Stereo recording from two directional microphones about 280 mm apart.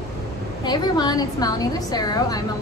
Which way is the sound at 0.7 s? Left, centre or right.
Centre.